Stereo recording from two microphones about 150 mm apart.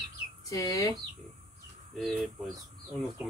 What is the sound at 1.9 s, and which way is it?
Speech, centre (ahead or behind).